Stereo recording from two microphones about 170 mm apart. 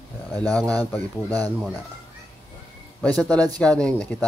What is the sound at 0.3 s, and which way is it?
Speech, 10° left (ahead or behind).